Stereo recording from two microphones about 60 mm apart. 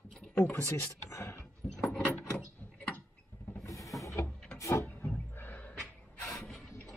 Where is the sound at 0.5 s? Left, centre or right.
Left.